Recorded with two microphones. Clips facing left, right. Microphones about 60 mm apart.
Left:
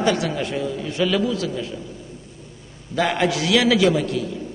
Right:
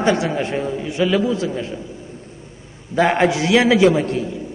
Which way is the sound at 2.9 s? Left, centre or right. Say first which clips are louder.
Right 5 dB; right.